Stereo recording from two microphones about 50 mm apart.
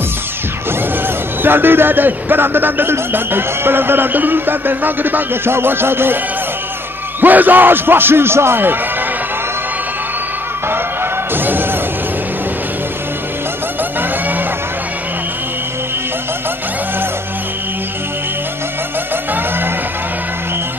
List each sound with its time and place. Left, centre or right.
1.0 s a man's voice: right
7.2 s a man's voice: right
11.3 s music: right